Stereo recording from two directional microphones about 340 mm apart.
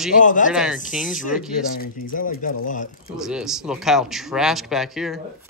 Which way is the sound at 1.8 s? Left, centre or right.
Left.